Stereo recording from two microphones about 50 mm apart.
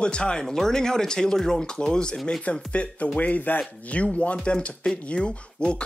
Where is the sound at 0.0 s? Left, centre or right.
Centre.